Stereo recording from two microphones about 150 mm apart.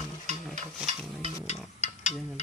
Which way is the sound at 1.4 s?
45° left (ahead or behind).